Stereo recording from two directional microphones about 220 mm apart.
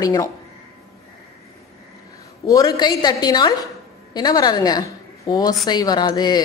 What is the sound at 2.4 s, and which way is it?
A woman's voice, 15° left (ahead or behind).